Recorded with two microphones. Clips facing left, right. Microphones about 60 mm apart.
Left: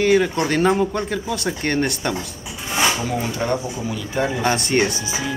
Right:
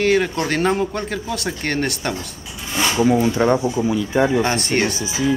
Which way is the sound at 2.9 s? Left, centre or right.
Right.